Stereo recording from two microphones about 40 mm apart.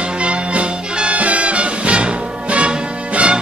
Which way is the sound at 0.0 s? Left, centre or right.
Right.